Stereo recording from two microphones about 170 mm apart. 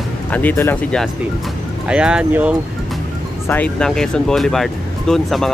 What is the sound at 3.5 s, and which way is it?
Speech, 5° left (ahead or behind).